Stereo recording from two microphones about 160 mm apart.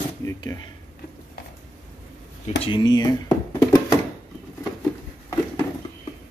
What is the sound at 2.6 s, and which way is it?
Speech, 25° left (ahead or behind).